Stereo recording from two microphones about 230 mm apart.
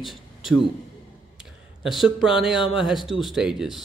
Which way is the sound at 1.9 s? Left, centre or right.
Centre.